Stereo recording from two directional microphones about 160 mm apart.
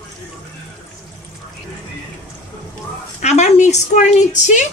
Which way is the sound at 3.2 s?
45° left (ahead or behind).